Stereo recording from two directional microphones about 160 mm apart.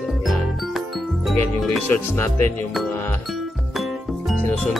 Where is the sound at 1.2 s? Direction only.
Centre (ahead or behind).